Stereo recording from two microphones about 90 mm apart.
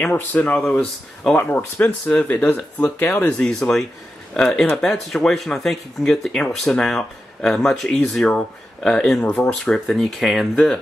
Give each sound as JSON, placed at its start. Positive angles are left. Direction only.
{"t": 0.0, "sound": "speech", "side_deg": 20}